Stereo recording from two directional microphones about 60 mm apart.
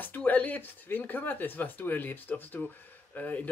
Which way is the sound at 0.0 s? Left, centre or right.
Left.